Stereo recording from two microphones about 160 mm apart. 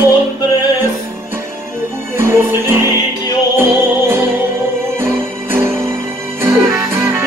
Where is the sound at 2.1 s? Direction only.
15° right (ahead or behind).